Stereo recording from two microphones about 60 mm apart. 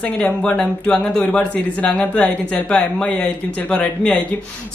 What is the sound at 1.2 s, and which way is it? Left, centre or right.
Speech, left.